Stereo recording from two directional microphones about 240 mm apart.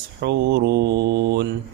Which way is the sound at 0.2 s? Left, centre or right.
Right.